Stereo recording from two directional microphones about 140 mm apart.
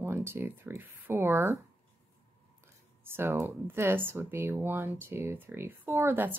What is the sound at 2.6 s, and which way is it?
Speech, 15° right (ahead or behind).